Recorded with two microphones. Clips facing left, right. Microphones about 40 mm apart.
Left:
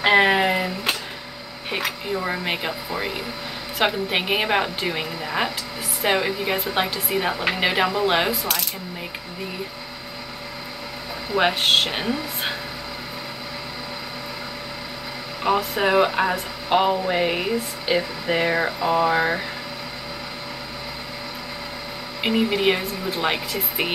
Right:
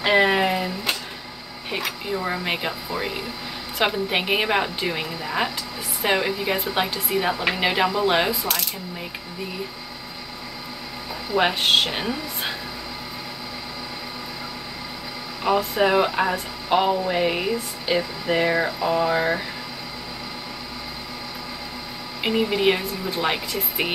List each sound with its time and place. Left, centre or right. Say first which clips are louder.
0.0 s a sound: left 2 dB; centre
1.9 s a woman's voice: even; centre
11.3 s speech: even; centre
15.5 s speech: even; left
15.8 s speech: left 1 dB; centre
22.2 s a woman's voice: even; centre